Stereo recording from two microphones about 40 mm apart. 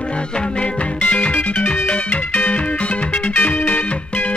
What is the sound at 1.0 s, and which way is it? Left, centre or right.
Music, left.